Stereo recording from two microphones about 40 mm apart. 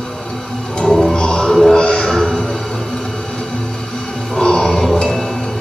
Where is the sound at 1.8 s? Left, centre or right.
Left.